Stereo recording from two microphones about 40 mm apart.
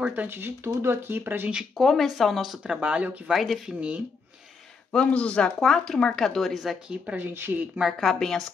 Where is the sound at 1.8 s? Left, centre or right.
Centre.